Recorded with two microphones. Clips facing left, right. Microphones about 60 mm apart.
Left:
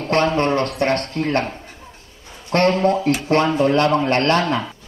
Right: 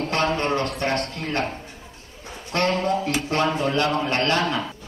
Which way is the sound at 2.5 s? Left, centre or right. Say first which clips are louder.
Left 6 dB; left.